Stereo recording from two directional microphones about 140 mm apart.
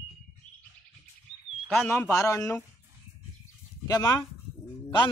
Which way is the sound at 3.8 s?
25° left (ahead or behind).